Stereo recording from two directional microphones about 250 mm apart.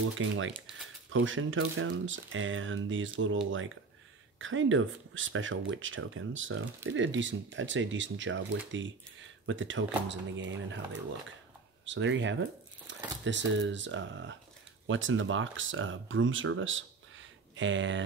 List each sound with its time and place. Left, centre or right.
0.2 s speech: right